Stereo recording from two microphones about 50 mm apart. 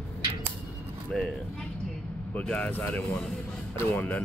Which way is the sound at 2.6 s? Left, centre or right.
Left.